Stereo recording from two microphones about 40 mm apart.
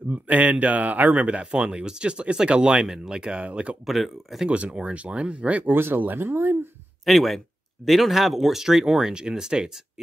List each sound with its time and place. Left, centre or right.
0.1 s speech: right
1.2 s speech: right
3.8 s speech: centre
4.5 s speech: right
5.7 s speech: right
5.9 s speech: right
7.1 s speech: centre